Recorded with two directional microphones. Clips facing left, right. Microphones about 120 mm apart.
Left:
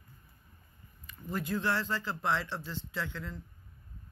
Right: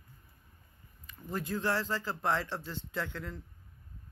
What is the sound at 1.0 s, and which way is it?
Speech, 35° right (ahead or behind).